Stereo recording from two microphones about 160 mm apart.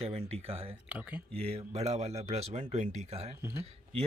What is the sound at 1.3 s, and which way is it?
Speech, 40° right (ahead or behind).